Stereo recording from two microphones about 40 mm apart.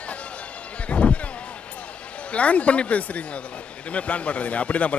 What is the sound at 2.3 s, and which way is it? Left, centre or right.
A man's voice, left.